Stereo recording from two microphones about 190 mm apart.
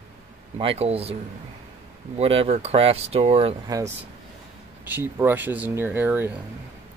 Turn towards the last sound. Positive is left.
turn(degrees=-10)  # may be behind; listen again after turning